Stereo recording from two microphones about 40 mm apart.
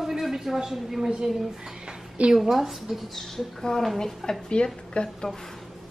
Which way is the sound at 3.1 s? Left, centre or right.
Centre.